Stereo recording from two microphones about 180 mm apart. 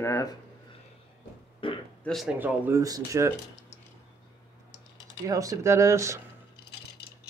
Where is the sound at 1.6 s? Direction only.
30° left (ahead or behind).